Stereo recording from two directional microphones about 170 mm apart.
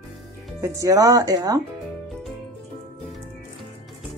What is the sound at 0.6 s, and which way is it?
Speech, 20° right (ahead or behind).